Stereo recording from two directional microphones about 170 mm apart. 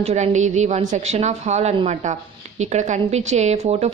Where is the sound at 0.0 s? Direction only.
40° right (ahead or behind).